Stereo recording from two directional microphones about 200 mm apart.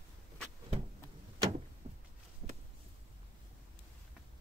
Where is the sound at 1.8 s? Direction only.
35° right (ahead or behind).